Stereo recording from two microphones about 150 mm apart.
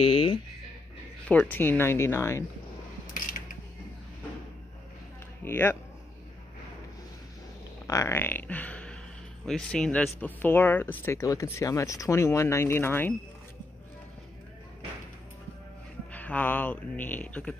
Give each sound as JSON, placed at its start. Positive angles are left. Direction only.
{"t": 0.0, "sound": "speech", "side_deg": 35}
{"t": 1.2, "sound": "speech", "side_deg": 10}
{"t": 5.4, "sound": "speech", "side_deg": 15}
{"t": 7.8, "sound": "speech", "side_deg": 20}
{"t": 16.1, "sound": "speech", "side_deg": 10}